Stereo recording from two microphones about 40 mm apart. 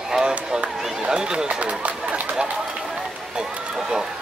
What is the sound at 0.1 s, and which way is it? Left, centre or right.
Run, centre.